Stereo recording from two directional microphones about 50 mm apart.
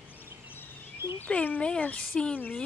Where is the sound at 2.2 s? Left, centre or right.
Centre.